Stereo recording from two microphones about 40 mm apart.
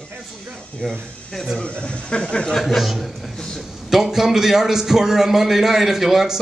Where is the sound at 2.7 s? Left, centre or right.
Centre.